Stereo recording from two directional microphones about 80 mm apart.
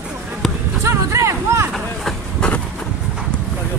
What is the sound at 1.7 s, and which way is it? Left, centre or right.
Vehicle, centre.